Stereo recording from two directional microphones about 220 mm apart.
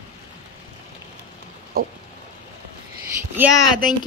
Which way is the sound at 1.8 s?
45° right (ahead or behind).